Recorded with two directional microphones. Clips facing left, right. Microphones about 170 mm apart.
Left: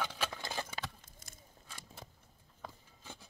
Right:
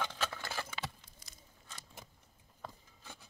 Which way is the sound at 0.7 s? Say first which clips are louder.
Even; 50° left (ahead or behind).